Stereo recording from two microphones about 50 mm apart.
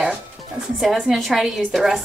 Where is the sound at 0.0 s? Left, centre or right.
Centre.